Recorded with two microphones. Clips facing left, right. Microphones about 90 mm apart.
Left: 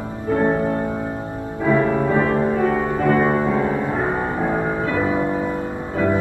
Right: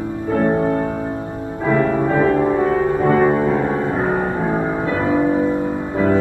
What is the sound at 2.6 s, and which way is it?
Music, 25° right (ahead or behind).